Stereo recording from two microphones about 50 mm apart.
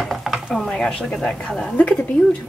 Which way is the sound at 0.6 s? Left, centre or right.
Centre.